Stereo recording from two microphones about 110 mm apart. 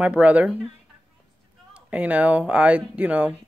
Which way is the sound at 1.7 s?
10° right (ahead or behind).